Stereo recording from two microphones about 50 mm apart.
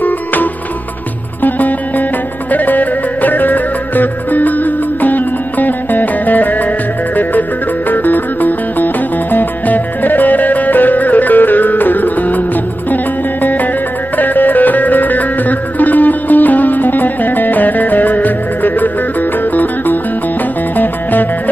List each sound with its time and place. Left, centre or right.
0.0 s music: left
7.9 s music: left